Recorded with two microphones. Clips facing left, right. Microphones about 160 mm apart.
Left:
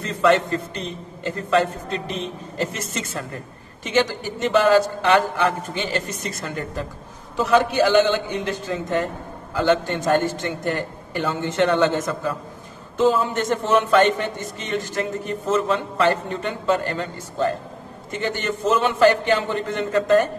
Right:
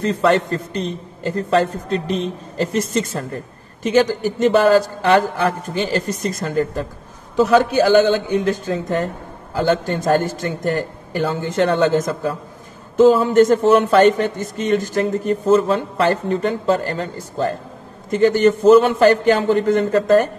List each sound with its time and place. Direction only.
0.0 s a woman's voice: 35° right (ahead or behind)